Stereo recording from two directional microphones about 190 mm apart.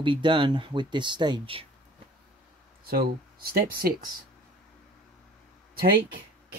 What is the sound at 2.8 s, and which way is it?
Speech, 50° right (ahead or behind).